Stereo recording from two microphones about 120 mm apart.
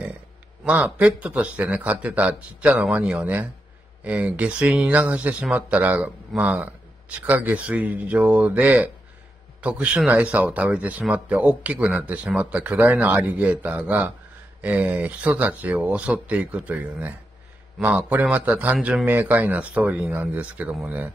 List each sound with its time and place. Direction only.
0.7 s speech: 15° right (ahead or behind)